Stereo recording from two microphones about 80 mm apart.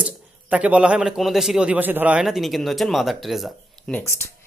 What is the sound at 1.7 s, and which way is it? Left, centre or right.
Speech, right.